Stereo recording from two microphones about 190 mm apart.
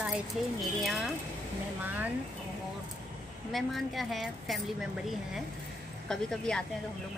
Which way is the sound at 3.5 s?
Centre (ahead or behind).